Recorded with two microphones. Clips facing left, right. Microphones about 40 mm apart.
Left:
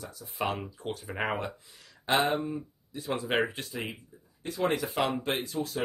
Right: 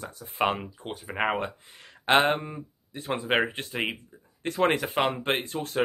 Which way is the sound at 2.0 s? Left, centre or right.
Right.